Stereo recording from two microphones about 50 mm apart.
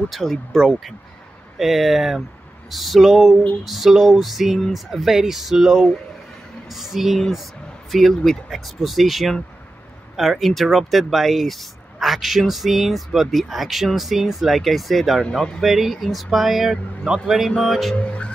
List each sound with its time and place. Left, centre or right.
0.1 s speech: centre
17.9 s music: left